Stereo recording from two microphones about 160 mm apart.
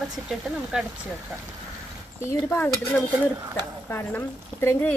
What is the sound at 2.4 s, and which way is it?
Speech, 10° left (ahead or behind).